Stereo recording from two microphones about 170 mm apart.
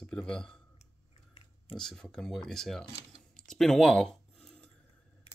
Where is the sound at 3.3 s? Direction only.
5° left (ahead or behind).